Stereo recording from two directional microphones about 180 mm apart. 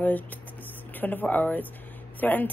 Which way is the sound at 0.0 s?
10° left (ahead or behind).